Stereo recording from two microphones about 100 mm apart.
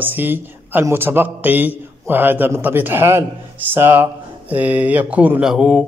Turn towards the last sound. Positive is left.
turn(degrees=-10)  # may be behind; listen again after turning